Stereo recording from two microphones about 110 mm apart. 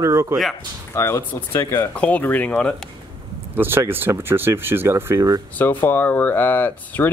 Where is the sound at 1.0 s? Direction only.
25° left (ahead or behind).